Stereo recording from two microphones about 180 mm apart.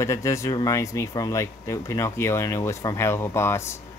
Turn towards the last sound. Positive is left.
turn(degrees=15)  # may be behind; listen again after turning